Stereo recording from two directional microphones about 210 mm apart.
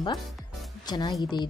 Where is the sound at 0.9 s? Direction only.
20° left (ahead or behind).